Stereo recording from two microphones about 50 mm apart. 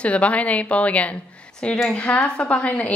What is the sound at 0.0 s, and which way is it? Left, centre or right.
A woman's voice, left.